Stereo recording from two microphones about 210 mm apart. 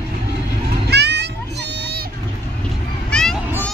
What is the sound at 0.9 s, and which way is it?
Music, 55° right (ahead or behind).